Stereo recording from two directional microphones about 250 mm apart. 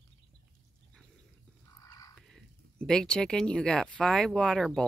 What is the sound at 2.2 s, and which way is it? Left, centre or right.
Speech, centre.